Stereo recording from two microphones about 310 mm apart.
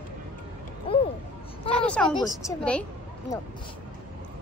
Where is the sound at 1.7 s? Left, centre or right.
Centre.